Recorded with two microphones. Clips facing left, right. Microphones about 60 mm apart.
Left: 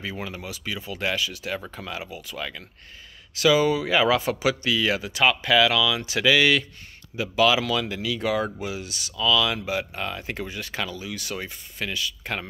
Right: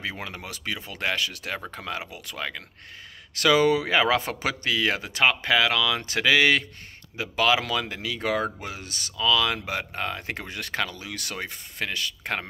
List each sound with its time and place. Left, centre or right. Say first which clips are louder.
0.0 s speech: left 1 dB; right